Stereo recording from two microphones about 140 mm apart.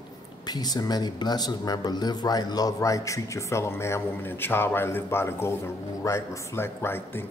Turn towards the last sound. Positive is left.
turn(degrees=15)  # may be behind; listen again after turning